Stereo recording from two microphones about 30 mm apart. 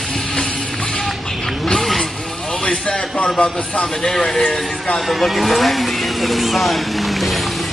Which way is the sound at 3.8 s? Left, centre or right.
Centre.